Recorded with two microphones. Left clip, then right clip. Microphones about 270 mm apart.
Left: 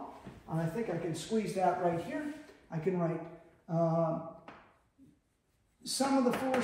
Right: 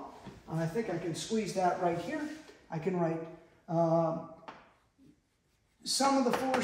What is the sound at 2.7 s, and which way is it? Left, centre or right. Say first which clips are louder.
Speech: right 2 dB; centre.